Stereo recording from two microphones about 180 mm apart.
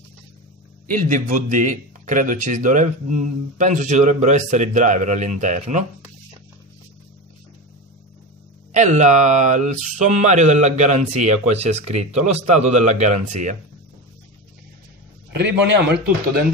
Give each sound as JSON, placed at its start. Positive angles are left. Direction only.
{"t": 0.8, "sound": "a man's voice", "side_deg": -45}
{"t": 8.7, "sound": "speech", "side_deg": -45}
{"t": 15.3, "sound": "a man's voice", "side_deg": -75}